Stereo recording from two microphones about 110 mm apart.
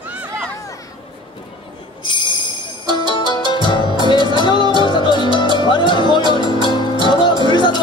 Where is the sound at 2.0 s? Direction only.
45° left (ahead or behind).